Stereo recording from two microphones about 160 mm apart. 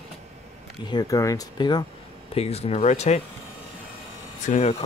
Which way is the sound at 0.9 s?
20° left (ahead or behind).